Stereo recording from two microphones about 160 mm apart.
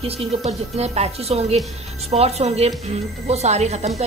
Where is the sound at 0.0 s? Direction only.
40° right (ahead or behind).